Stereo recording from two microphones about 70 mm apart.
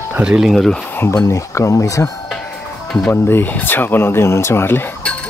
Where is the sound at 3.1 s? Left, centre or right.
Left.